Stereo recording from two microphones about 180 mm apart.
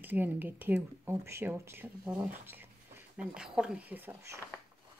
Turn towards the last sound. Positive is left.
turn(degrees=-15)  # may be behind; listen again after turning